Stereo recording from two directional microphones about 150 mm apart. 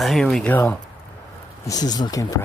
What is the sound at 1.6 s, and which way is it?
Speech, 25° left (ahead or behind).